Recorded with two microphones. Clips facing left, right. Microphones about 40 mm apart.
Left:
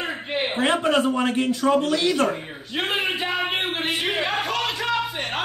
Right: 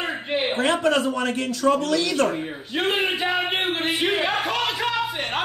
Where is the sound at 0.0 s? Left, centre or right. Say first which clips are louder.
Right 1 dB; centre.